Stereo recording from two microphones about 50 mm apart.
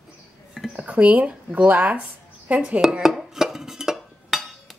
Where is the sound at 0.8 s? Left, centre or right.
Right.